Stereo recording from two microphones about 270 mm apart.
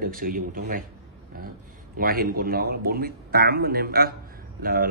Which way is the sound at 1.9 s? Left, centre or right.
Right.